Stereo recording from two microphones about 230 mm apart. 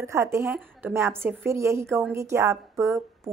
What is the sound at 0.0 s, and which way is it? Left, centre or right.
A woman's voice, centre.